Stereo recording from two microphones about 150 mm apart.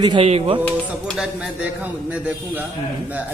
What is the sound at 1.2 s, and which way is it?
A man's voice, 10° right (ahead or behind).